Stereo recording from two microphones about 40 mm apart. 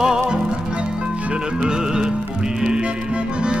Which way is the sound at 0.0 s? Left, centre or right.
Centre.